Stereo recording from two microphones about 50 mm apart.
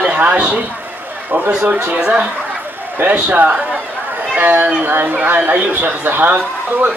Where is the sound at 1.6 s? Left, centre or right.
Right.